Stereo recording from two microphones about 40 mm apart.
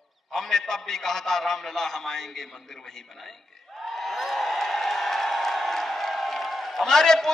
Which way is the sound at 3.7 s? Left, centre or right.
Centre.